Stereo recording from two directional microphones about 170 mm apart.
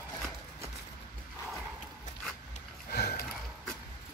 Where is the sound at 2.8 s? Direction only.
70° left (ahead or behind).